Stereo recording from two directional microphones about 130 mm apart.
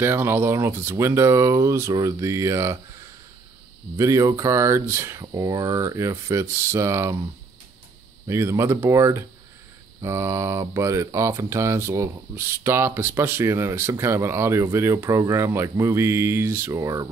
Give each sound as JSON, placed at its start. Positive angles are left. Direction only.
{"t": 0.0, "sound": "speech", "side_deg": -15}
{"t": 3.9, "sound": "speech", "side_deg": -25}
{"t": 8.3, "sound": "speech", "side_deg": -20}